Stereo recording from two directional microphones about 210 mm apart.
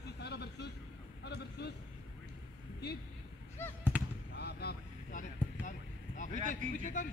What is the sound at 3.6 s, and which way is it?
Speech, 10° left (ahead or behind).